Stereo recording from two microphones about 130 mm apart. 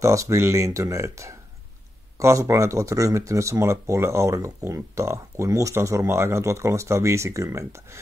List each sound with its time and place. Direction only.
0.0 s speech: 25° right (ahead or behind)